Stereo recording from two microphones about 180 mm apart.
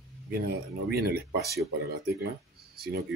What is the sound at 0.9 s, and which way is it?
Speech, 60° right (ahead or behind).